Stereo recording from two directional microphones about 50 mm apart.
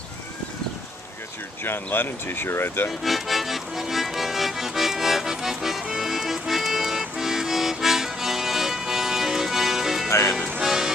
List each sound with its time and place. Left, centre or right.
1.6 s speech: left
3.0 s accordion: centre
10.0 s music: left
10.6 s music: centre